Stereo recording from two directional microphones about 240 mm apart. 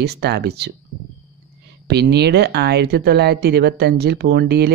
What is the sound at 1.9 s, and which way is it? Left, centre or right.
Speech, right.